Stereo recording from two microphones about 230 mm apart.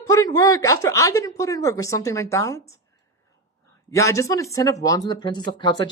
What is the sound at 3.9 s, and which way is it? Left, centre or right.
Speech, centre.